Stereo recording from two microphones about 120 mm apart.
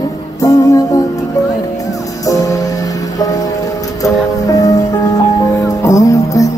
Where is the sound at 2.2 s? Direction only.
30° left (ahead or behind).